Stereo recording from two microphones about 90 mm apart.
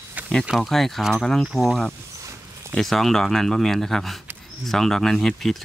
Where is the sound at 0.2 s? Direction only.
15° right (ahead or behind).